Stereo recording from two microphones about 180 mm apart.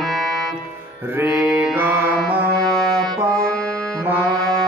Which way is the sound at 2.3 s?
60° right (ahead or behind).